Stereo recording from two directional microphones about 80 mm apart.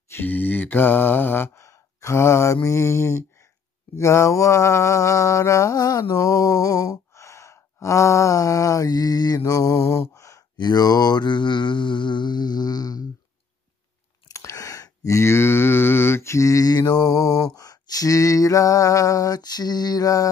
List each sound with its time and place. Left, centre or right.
0.1 s mantra: left
10.6 s mantra: left
14.2 s a sound: left